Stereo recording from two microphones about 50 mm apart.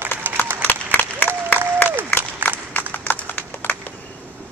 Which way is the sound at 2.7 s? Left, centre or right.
Left.